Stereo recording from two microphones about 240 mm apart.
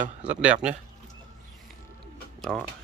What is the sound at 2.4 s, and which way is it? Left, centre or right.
Music, centre.